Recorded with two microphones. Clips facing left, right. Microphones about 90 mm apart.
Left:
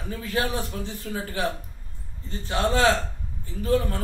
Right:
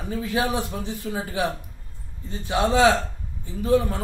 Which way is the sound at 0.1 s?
10° right (ahead or behind).